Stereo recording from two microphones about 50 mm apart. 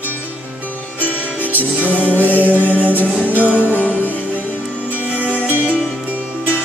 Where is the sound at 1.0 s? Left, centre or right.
Left.